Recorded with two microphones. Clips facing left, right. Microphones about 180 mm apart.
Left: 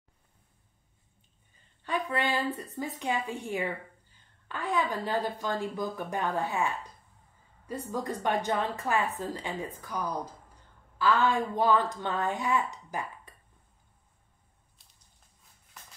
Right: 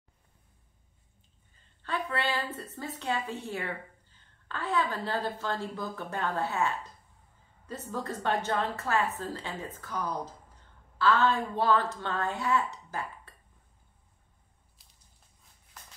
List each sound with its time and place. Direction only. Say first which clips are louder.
1.8 s a woman's voice: left 2 dB; 15° left (ahead or behind)